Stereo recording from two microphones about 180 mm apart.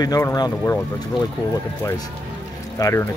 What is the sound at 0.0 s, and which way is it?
Speech, 20° left (ahead or behind).